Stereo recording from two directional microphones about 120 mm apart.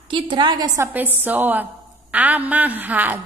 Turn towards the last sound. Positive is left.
turn(degrees=-15)  # may be behind; listen again after turning